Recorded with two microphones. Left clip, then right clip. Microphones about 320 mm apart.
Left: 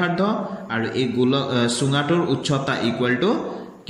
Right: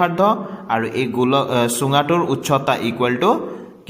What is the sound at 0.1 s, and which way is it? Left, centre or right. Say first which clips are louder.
Speech: right 6 dB; right.